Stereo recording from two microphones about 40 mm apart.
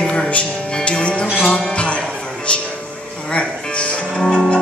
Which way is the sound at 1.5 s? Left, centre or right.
Left.